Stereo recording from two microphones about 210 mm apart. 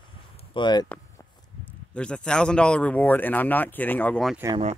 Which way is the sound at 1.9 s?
5° left (ahead or behind).